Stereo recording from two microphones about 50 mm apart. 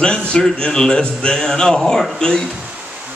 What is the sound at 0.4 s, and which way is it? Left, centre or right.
Speech, centre.